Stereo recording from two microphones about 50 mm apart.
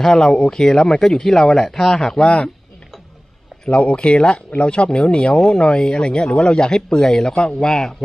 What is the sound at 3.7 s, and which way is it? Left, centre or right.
Speech, left.